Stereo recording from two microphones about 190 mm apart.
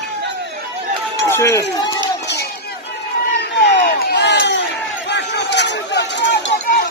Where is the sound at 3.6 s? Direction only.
60° left (ahead or behind).